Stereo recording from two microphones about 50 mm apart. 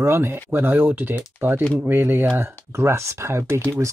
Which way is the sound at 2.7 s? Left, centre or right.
Right.